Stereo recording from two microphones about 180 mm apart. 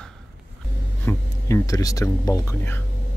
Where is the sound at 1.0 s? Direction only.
15° left (ahead or behind).